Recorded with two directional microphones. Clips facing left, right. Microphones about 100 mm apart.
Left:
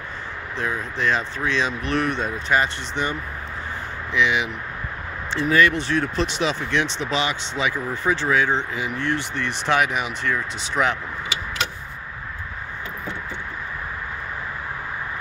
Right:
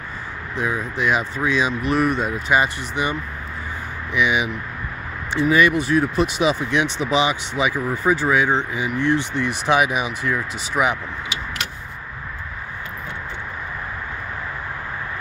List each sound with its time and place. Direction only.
0.6 s speech: 10° right (ahead or behind)